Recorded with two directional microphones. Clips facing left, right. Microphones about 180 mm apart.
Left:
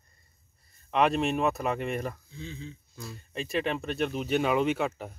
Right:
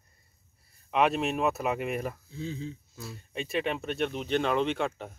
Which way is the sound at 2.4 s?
40° right (ahead or behind).